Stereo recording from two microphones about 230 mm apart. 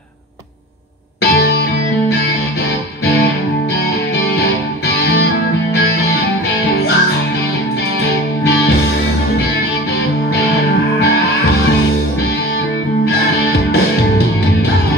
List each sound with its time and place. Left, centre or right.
1.3 s music: left
4.8 s music: left